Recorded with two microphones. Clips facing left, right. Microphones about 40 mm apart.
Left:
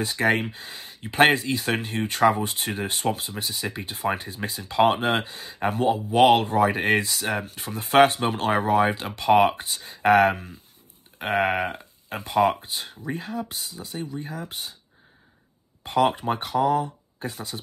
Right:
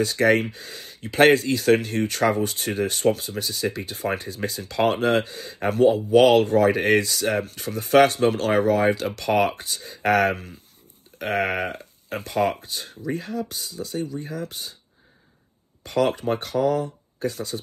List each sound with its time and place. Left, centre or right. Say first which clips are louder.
0.0 s speech: right 3 dB; left
5.7 s speech: right 6 dB; left
14.5 s speech: left 1 dB; left
15.8 s speech: even; left